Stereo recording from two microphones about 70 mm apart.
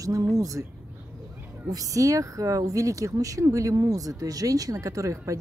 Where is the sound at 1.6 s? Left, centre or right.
Right.